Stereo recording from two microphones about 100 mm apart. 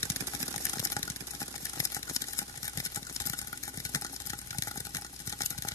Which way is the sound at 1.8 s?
35° left (ahead or behind).